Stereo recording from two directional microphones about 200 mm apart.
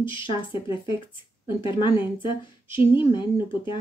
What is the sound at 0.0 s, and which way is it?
Speech, 25° left (ahead or behind).